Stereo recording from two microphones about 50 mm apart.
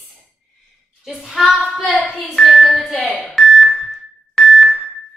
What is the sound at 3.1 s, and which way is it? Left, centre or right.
Speech, right.